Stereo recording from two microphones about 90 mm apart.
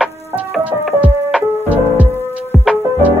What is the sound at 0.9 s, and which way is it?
Music, 15° right (ahead or behind).